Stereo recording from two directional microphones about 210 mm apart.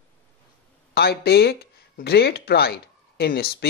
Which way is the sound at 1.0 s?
50° left (ahead or behind).